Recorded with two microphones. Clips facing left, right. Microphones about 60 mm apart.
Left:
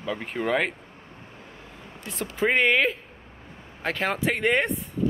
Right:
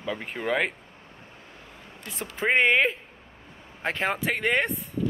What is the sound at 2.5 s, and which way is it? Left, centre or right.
Speech, right.